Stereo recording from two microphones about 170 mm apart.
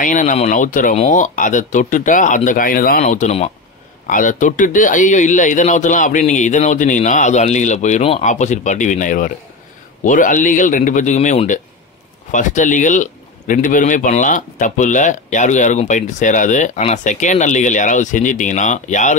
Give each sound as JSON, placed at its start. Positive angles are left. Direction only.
{"t": 0.0, "sound": "speech", "side_deg": 50}